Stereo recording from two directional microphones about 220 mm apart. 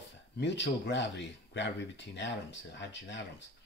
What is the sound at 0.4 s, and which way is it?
Speech, 55° left (ahead or behind).